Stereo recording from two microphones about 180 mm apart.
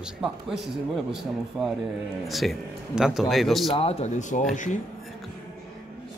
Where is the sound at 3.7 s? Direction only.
35° left (ahead or behind).